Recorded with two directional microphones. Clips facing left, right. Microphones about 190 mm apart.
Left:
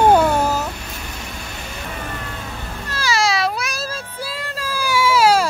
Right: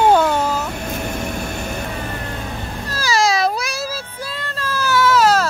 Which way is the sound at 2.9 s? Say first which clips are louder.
Right 2 dB; 40° right (ahead or behind).